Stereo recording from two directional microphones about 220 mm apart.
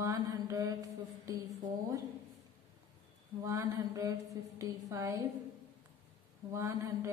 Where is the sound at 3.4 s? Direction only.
15° right (ahead or behind).